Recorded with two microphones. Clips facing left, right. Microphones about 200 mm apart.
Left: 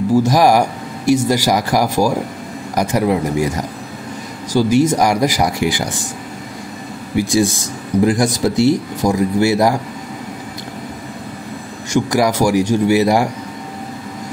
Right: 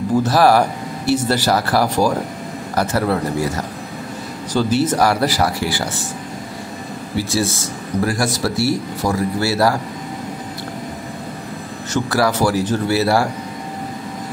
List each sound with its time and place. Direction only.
0.1 s speech: 10° left (ahead or behind)
7.2 s speech: 15° left (ahead or behind)
11.9 s speech: 15° left (ahead or behind)